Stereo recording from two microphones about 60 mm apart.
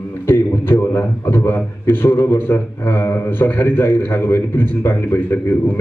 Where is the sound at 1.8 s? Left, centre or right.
Left.